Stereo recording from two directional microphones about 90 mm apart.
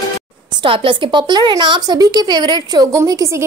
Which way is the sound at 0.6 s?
80° right.